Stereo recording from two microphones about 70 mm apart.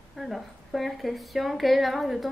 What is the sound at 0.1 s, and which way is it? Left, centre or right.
A woman's voice, centre.